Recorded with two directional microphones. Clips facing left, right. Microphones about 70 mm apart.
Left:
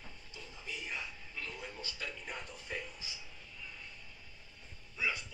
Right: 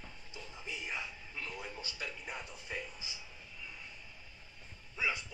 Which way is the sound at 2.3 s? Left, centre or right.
Centre.